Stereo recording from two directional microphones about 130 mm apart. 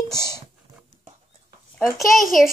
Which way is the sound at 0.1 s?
20° right (ahead or behind).